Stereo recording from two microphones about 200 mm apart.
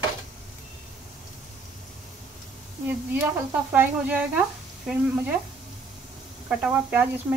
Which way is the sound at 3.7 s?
10° right (ahead or behind).